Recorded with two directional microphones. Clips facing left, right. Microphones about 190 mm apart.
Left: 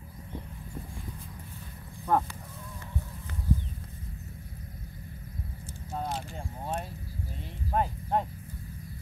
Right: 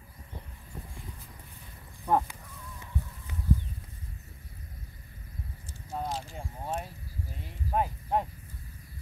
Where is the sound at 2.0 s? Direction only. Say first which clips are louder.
Even; 15° right (ahead or behind).